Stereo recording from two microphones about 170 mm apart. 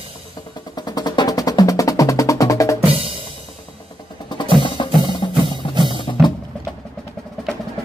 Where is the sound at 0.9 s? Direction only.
25° left (ahead or behind).